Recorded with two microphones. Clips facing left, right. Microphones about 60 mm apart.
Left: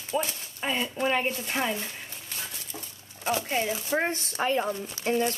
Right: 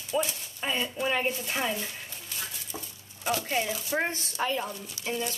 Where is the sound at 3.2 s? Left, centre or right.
Left.